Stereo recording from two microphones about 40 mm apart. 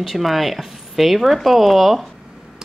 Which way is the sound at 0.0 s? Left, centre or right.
Centre.